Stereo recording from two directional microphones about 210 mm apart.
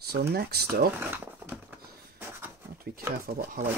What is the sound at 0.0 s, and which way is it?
Speech, 50° right (ahead or behind).